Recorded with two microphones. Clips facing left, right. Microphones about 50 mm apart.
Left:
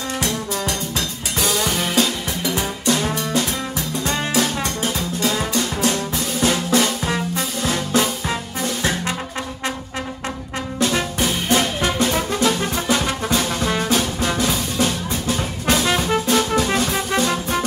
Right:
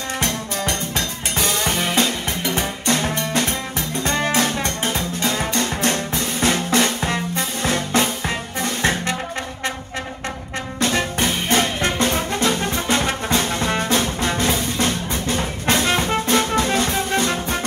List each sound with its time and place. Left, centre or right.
0.2 s music: right
10.8 s music: right